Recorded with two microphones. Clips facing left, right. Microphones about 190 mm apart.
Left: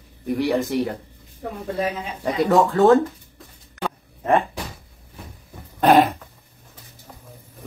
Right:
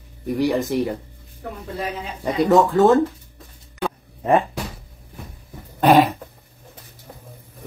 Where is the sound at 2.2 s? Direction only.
Centre (ahead or behind).